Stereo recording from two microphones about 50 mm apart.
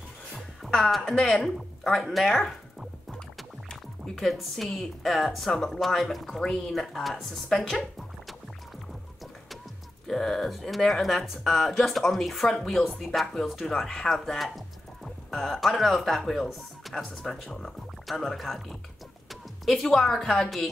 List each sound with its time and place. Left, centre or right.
0.3 s music: centre
1.0 s a woman's voice: centre
1.4 s music: centre
4.1 s speech: centre
7.4 s a woman's voice: centre
10.0 s a woman's voice: centre